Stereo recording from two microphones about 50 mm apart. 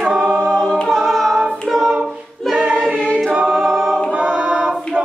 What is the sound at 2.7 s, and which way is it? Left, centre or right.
Choir, centre.